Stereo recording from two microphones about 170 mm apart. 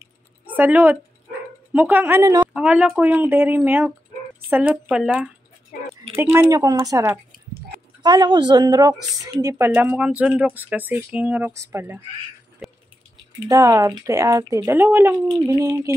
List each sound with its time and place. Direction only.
0.5 s speech: 10° right (ahead or behind)
2.4 s speech: 5° right (ahead or behind)
5.7 s a sound: 55° left (ahead or behind)
6.5 s a woman's voice: 20° right (ahead or behind)
12.6 s a sound: centre (ahead or behind)
13.5 s speech: 20° right (ahead or behind)